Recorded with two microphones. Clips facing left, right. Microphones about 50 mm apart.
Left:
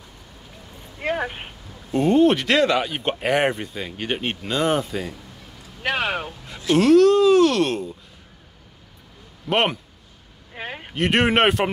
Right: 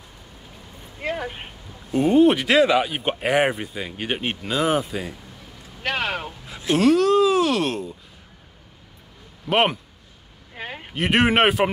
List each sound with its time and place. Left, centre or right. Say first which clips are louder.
1.0 s a sound: left 3 dB; left
1.9 s speech: right 1 dB; centre
5.8 s speech: left 2 dB; centre
9.5 s speech: right 1 dB; centre
10.5 s a sound: left 1 dB; centre
11.0 s speech: even; centre